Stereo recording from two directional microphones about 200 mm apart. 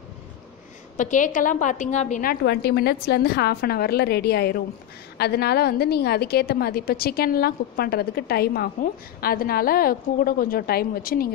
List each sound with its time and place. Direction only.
0.9 s a woman's voice: 40° left (ahead or behind)
2.4 s a woman's voice: 55° left (ahead or behind)